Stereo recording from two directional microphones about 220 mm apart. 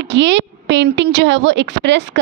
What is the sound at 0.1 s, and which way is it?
A woman's voice, 55° right (ahead or behind).